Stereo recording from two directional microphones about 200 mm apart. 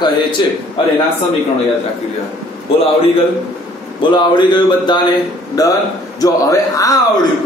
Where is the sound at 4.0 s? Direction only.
20° left (ahead or behind).